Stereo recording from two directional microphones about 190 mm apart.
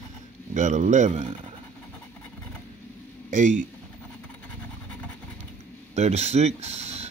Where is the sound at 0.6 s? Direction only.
40° right (ahead or behind).